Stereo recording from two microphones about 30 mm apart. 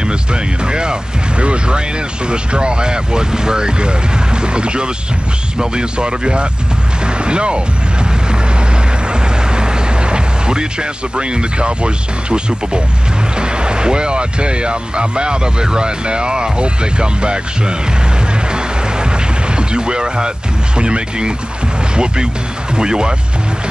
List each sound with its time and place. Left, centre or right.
0.0 s a sound: right
1.4 s speech: right
9.5 s speech: right
19.5 s speech: right